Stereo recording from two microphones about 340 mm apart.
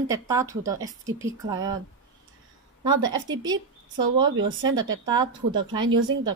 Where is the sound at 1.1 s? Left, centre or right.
Right.